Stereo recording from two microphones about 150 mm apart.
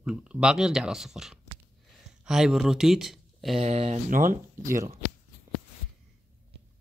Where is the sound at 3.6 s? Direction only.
45° right (ahead or behind).